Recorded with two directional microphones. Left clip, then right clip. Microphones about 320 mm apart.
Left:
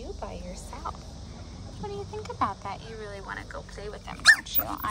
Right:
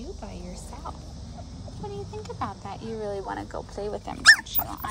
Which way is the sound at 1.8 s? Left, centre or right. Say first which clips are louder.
Left 1 dB; centre.